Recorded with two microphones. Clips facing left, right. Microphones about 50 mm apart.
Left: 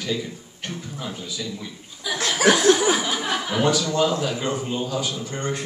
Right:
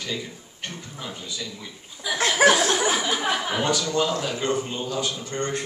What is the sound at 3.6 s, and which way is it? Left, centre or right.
A man's voice, centre.